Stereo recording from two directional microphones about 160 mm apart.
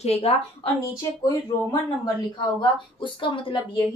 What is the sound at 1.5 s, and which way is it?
Speech, 25° left (ahead or behind).